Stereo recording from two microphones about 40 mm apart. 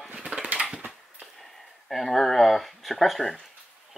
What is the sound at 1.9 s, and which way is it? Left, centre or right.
Speech, centre.